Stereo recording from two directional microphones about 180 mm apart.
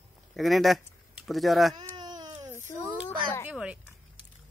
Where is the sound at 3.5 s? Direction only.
5° right (ahead or behind).